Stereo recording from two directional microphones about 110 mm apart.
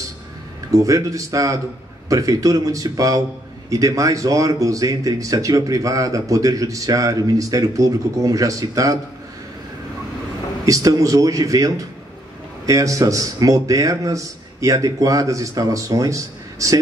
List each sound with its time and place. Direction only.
0.7 s speech: 30° right (ahead or behind)
10.6 s speech: 30° right (ahead or behind)